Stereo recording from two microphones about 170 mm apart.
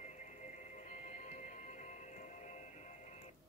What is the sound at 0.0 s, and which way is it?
Music, 45° left (ahead or behind).